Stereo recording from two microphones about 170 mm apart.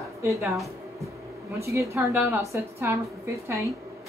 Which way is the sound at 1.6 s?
15° right (ahead or behind).